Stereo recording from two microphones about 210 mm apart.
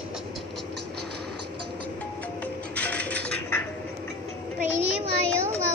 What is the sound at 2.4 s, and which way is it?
Music, 5° left (ahead or behind).